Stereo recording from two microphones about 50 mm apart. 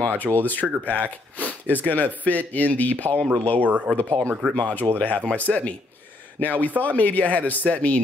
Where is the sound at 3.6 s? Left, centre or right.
Right.